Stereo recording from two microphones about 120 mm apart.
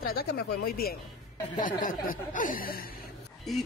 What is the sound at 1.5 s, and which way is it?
Speech, 90° left.